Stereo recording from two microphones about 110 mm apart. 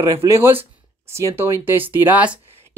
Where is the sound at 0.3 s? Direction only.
20° right (ahead or behind).